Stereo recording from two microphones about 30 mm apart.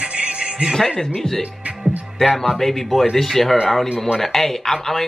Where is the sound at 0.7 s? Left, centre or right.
Left.